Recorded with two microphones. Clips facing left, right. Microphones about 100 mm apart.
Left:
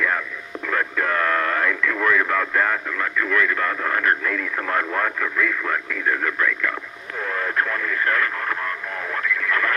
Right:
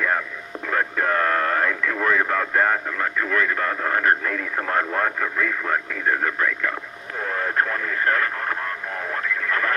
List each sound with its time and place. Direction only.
0.7 s speech: 30° right (ahead or behind)
7.3 s radio: 25° right (ahead or behind)